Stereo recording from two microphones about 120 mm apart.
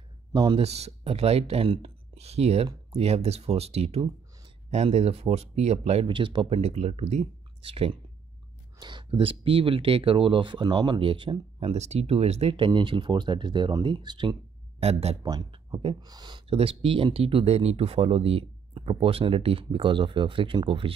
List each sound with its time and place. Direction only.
0.3 s speech: 40° right (ahead or behind)
0.6 s speech: 60° right (ahead or behind)
6.0 s speech: 45° right (ahead or behind)
6.6 s speech: 60° right (ahead or behind)
8.7 s speech: 40° right (ahead or behind)
11.7 s speech: 65° right (ahead or behind)
12.5 s speech: 40° right (ahead or behind)
14.8 s speech: 60° right (ahead or behind)
15.5 s speech: 45° right (ahead or behind)
16.0 s speech: 35° right (ahead or behind)
16.4 s speech: 50° right (ahead or behind)